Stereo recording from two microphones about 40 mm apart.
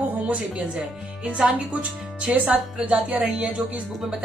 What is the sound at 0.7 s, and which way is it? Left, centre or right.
Speech, right.